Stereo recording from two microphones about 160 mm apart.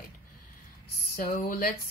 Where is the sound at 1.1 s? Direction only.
65° left (ahead or behind).